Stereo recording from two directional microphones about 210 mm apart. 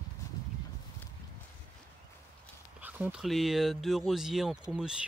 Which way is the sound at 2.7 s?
10° right (ahead or behind).